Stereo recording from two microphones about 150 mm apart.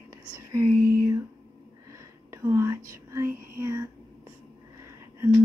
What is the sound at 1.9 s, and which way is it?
Whispering, 20° right (ahead or behind).